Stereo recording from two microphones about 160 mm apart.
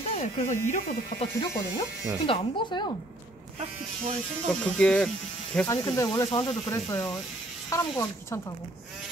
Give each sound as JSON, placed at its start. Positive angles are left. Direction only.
{"t": 0.1, "sound": "speech", "side_deg": 45}
{"t": 1.4, "sound": "speech", "side_deg": 20}
{"t": 3.5, "sound": "speech", "side_deg": -45}
{"t": 4.5, "sound": "speech", "side_deg": 5}
{"t": 5.7, "sound": "speech", "side_deg": 20}